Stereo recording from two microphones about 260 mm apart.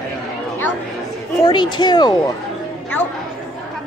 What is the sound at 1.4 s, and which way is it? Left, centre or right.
Speech, centre.